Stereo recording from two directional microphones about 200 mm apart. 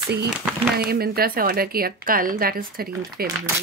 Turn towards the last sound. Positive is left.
turn(degrees=-50)  # may be behind; listen again after turning